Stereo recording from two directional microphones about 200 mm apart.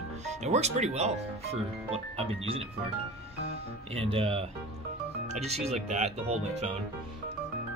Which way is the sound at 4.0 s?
30° right (ahead or behind).